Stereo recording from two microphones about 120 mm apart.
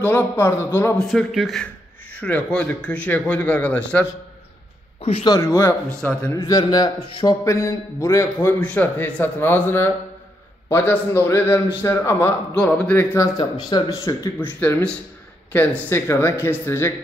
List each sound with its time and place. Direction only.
0.0 s speech: 15° left (ahead or behind)
0.9 s speech: centre (ahead or behind)
5.4 s a man's voice: 25° left (ahead or behind)
5.9 s speech: 10° left (ahead or behind)
6.3 s a man's voice: 25° left (ahead or behind)
12.5 s speech: 5° left (ahead or behind)
13.2 s speech: 30° left (ahead or behind)
14.0 s a man's voice: 20° left (ahead or behind)